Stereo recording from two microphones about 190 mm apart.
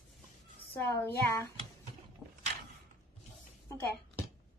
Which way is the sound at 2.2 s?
Centre (ahead or behind).